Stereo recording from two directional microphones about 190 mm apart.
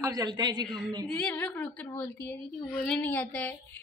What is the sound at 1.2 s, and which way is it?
A woman's voice, 5° left (ahead or behind).